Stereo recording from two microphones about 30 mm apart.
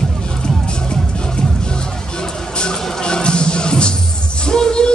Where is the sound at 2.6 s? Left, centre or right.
Left.